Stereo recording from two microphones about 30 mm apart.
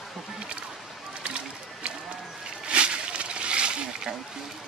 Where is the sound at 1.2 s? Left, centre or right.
Right.